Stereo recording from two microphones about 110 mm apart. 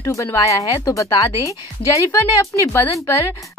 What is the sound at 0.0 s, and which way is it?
Speech, 30° left (ahead or behind).